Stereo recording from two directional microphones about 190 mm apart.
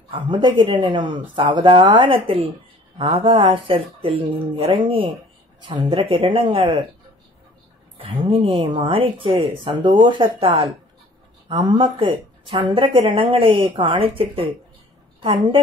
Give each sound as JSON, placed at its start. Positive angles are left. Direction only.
{"t": 0.1, "sound": "speech", "side_deg": -25}
{"t": 8.0, "sound": "speech", "side_deg": -30}